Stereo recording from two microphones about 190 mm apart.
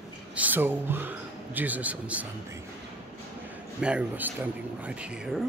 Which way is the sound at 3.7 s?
5° right (ahead or behind).